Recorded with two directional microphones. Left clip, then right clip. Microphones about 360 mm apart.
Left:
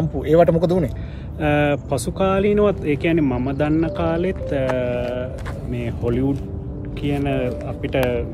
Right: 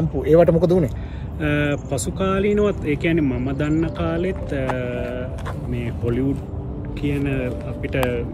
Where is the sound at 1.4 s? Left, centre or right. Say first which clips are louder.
Left 4 dB; centre.